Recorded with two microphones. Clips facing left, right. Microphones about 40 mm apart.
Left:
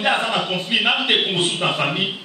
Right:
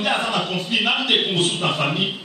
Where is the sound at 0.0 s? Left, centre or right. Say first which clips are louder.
Left 2 dB; centre.